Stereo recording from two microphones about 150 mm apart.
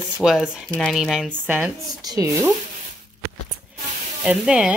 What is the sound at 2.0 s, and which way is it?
Speech, 25° right (ahead or behind).